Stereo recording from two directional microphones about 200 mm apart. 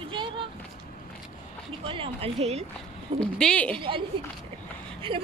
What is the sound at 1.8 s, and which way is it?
Speech, 25° right (ahead or behind).